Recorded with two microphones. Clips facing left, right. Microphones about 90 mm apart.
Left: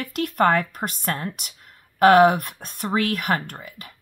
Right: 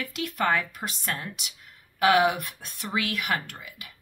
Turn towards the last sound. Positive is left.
turn(degrees=45)  # may be behind; listen again after turning